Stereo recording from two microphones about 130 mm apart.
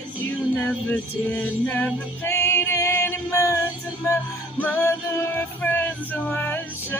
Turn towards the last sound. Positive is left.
turn(degrees=15)  # may be behind; listen again after turning